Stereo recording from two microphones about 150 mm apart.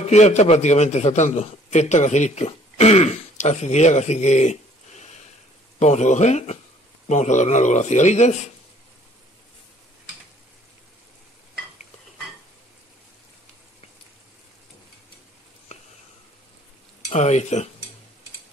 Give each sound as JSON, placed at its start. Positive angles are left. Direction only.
{"t": 0.1, "sound": "a man's voice", "side_deg": 50}
{"t": 17.1, "sound": "a man's voice", "side_deg": 50}